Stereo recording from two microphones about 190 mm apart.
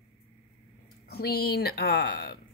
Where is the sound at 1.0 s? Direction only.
55° left (ahead or behind).